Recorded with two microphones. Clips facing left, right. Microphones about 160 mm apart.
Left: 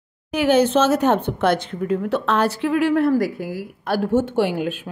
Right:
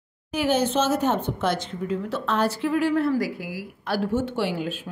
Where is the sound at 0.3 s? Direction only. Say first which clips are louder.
Left 6 dB; 70° left (ahead or behind).